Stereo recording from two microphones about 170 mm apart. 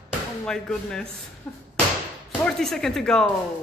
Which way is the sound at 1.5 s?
10° left (ahead or behind).